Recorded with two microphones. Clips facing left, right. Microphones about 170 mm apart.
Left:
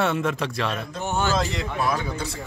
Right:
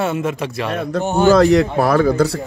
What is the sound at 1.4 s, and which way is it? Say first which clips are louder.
Speech: right 13 dB; 70° right (ahead or behind).